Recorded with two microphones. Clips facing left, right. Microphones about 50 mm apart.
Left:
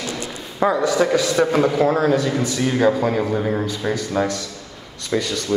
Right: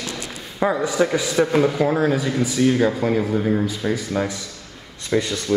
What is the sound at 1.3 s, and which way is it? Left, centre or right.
A man's voice, centre.